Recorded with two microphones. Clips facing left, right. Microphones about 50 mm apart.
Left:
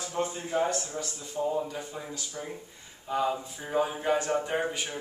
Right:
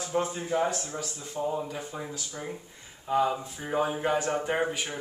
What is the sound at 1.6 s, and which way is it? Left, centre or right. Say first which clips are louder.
Speech: even; centre.